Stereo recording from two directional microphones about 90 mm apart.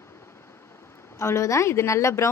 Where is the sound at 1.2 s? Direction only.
35° left (ahead or behind).